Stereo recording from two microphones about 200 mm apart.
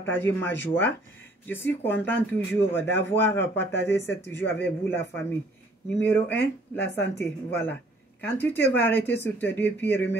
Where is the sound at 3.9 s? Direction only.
60° left (ahead or behind).